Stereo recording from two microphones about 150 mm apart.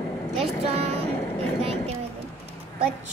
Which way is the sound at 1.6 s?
40° right (ahead or behind).